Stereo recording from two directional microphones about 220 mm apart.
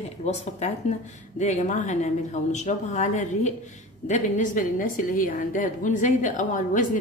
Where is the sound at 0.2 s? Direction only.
30° left (ahead or behind).